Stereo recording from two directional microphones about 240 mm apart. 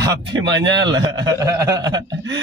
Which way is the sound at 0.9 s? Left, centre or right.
Centre.